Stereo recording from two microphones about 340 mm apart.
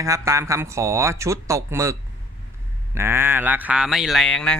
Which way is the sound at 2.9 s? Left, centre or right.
Centre.